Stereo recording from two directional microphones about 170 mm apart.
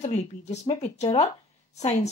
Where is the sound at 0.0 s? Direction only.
40° left (ahead or behind).